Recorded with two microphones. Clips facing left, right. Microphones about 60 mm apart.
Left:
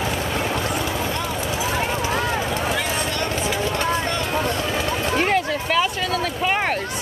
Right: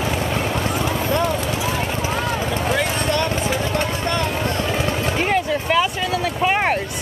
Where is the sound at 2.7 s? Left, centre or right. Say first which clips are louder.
Right 4 dB; right.